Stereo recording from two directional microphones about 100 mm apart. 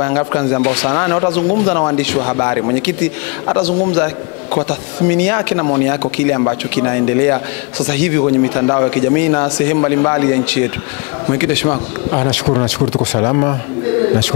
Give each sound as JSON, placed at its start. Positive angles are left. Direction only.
{"t": 0.0, "sound": "a man's voice", "side_deg": 20}